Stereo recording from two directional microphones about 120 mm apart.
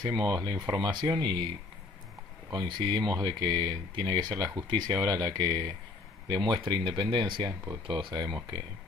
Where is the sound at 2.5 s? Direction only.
40° right (ahead or behind).